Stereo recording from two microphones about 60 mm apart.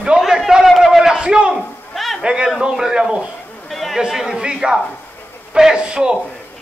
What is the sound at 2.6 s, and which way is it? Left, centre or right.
Speech, centre.